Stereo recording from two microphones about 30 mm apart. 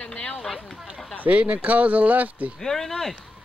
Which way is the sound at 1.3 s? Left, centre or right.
Right.